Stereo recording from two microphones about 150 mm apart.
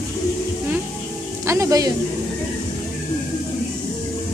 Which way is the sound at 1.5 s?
20° right (ahead or behind).